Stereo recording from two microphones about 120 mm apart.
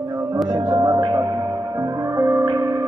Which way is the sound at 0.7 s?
35° right (ahead or behind).